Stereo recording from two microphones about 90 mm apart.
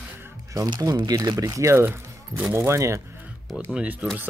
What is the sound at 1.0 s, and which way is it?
Speech, 50° right (ahead or behind).